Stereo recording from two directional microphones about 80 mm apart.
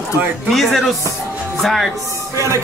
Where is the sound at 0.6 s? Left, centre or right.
Centre.